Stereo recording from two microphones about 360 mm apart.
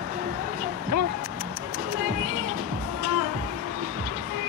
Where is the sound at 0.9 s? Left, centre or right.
Right.